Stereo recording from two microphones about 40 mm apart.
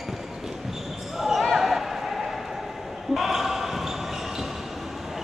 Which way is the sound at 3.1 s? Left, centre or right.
Centre.